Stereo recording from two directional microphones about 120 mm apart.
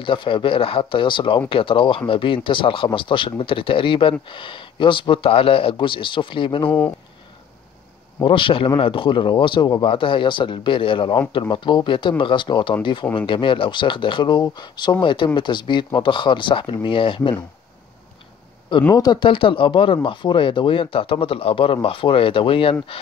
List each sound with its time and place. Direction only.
0.0 s speech: 45° left (ahead or behind)
8.2 s speech: 45° left (ahead or behind)
18.9 s speech: 35° left (ahead or behind)